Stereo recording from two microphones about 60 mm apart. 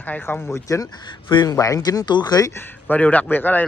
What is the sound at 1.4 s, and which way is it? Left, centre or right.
Speech, left.